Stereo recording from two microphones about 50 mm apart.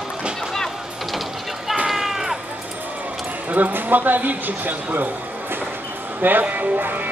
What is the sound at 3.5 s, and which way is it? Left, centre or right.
Speech, right.